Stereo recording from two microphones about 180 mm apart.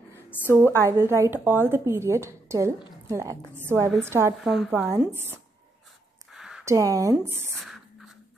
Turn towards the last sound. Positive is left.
turn(degrees=-20)  # may be behind; listen again after turning